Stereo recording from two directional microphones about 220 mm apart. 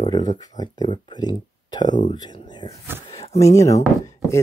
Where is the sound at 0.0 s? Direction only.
20° left (ahead or behind).